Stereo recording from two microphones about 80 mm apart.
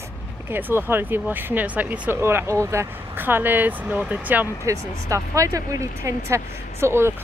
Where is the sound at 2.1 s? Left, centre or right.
Right.